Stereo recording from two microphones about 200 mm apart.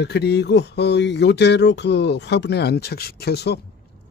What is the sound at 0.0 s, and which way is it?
Speech, 55° left (ahead or behind).